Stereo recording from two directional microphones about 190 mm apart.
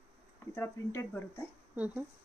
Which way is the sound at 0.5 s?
15° left (ahead or behind).